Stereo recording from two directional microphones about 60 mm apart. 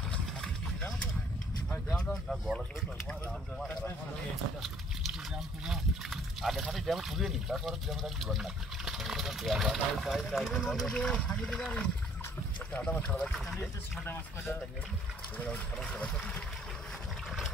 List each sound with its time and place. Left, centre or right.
5.7 s speech: centre
12.7 s speech: left
13.2 s speech: centre
14.0 s speech: left
15.4 s speech: left